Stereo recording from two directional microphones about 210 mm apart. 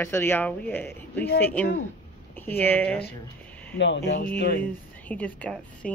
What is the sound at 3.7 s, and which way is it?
Speech, 60° left (ahead or behind).